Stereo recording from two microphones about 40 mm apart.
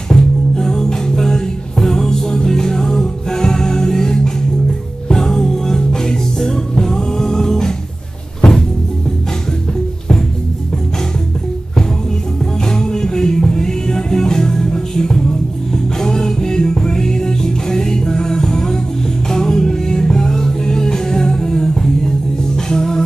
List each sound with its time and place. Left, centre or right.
0.1 s music: centre
12.6 s music: centre